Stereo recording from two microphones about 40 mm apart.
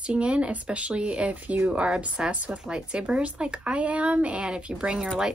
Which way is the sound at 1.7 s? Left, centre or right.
Right.